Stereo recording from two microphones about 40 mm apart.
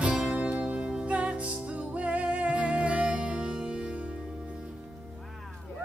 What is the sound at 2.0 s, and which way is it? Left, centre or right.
Music, right.